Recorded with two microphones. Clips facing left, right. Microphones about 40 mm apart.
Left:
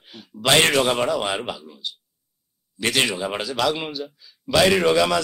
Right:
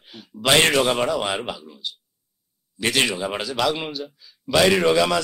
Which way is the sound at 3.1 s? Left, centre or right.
Centre.